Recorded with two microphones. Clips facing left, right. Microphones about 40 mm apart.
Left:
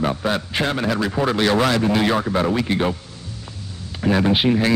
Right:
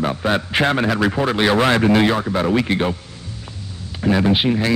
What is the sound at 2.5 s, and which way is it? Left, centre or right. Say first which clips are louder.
Speech: right 3 dB; right.